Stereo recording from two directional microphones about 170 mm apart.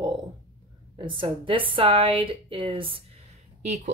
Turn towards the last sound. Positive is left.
turn(degrees=-45)  # may be behind; listen again after turning